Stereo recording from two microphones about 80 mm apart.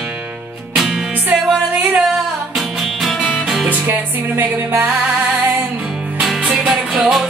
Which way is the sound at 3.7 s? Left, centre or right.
Right.